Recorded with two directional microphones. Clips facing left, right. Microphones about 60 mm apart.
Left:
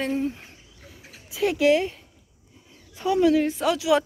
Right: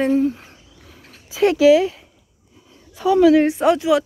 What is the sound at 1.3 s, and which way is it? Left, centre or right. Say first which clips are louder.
Speech: right 7 dB; right.